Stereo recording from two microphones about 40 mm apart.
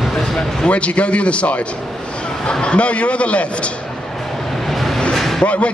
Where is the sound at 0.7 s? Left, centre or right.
Left.